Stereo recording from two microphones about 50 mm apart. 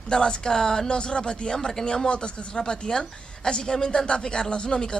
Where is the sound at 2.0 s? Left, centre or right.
Centre.